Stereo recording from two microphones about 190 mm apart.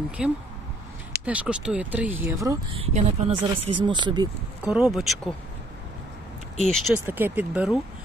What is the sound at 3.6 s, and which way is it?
Speech, 25° right (ahead or behind).